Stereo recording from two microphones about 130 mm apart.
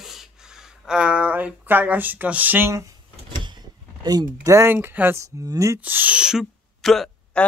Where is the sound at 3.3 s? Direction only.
35° right (ahead or behind).